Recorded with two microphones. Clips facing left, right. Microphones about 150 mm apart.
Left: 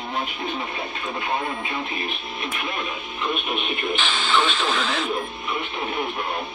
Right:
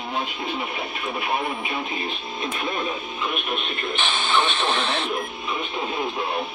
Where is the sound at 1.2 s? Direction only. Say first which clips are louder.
Even; 15° right (ahead or behind).